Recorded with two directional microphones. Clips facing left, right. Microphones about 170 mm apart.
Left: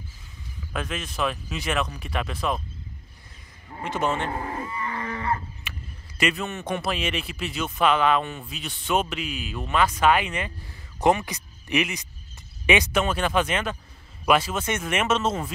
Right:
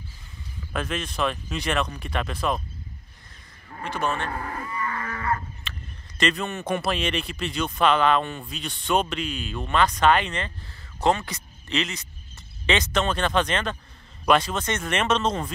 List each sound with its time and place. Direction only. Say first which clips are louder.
0.7 s a man's voice: right 2 dB; centre (ahead or behind)
3.6 s livestock: left 2 dB; 20° left (ahead or behind)
5.7 s a man's voice: even; 10° left (ahead or behind)